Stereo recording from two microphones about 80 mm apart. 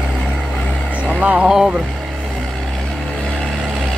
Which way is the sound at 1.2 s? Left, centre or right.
Centre.